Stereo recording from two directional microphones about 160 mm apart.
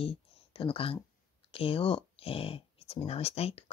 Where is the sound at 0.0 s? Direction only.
35° left (ahead or behind).